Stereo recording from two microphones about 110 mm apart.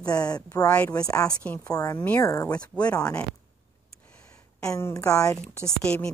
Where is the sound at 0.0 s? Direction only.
35° left (ahead or behind).